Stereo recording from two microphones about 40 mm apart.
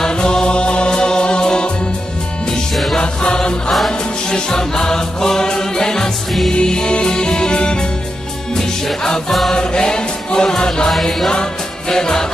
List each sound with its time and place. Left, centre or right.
0.0 s music: centre
3.0 s music: left
10.9 s music: centre